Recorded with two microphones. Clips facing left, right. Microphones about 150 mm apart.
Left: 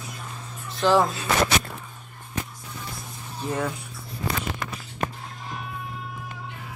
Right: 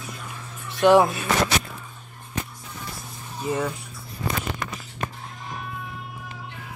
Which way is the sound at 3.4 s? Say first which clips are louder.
Right 2 dB; 5° right (ahead or behind).